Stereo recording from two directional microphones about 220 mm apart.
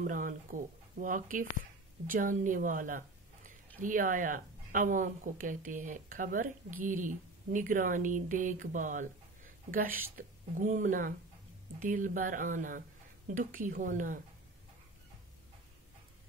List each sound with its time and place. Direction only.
0.0 s a woman's voice: 35° right (ahead or behind)